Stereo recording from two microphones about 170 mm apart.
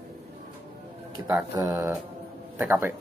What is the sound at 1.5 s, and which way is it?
Speech, 15° right (ahead or behind).